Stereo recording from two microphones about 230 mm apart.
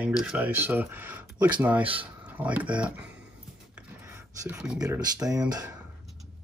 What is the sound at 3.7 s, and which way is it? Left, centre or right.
Writing, centre.